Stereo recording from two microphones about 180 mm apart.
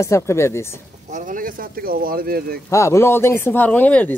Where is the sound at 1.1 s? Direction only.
50° right (ahead or behind).